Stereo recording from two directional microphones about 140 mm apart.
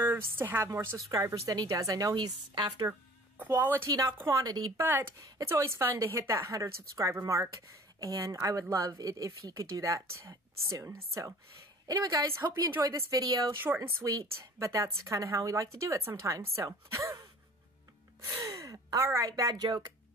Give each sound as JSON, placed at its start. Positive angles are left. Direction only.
{"t": 0.4, "sound": "a woman's voice", "side_deg": -15}
{"t": 2.9, "sound": "speech", "side_deg": -15}
{"t": 3.9, "sound": "a woman's voice", "side_deg": -25}
{"t": 18.4, "sound": "speech", "side_deg": -25}